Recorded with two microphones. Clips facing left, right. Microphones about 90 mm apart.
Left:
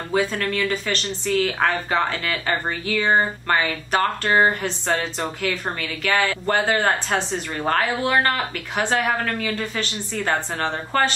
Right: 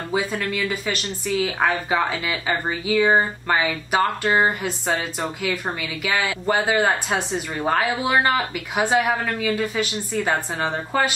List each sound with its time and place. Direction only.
0.1 s speech: 10° right (ahead or behind)